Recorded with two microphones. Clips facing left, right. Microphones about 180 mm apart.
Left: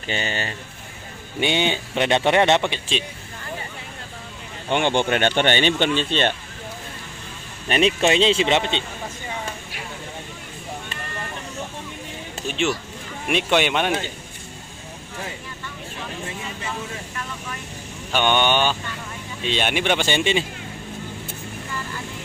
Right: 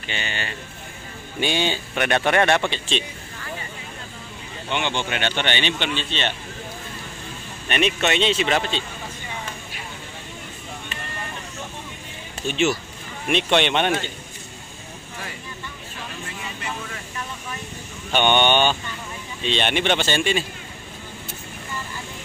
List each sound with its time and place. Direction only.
0.1 s speech: 40° left (ahead or behind)
1.4 s speech: 20° left (ahead or behind)
4.6 s speech: 50° left (ahead or behind)
7.6 s speech: 35° left (ahead or behind)
12.4 s speech: 5° right (ahead or behind)
13.3 s speech: 10° left (ahead or behind)
18.1 s speech: 5° left (ahead or behind); by 20.4 s 20° left (ahead or behind)